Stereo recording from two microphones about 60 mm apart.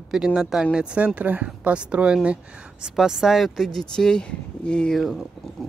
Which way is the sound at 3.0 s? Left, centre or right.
Centre.